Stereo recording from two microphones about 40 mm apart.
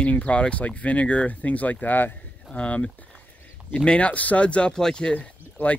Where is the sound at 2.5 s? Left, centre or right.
Left.